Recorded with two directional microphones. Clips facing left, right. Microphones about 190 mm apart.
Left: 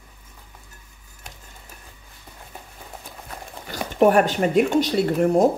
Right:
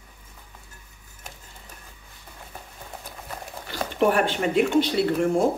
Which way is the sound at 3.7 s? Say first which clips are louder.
Left 5 dB; 45° left (ahead or behind).